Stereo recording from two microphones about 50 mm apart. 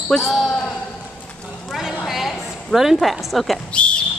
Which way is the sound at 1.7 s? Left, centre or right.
Centre.